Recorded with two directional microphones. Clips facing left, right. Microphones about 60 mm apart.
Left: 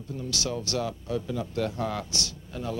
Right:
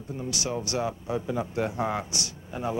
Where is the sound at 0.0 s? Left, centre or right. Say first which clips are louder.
Even; right.